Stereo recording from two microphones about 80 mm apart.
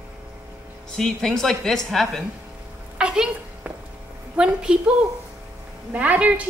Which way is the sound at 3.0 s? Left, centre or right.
Centre.